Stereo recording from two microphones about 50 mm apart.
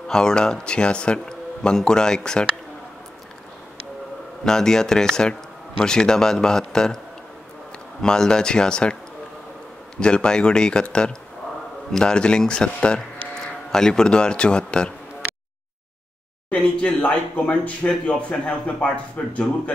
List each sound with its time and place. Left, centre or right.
0.1 s speech: centre
4.5 s speech: centre
8.0 s speech: centre
9.9 s speech: centre
16.4 s speech: left